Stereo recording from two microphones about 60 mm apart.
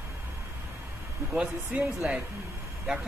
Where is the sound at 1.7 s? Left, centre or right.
Right.